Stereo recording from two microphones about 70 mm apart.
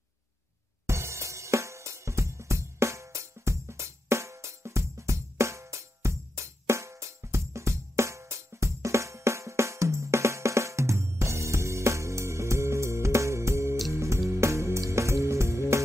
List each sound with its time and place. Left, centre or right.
0.8 s music: right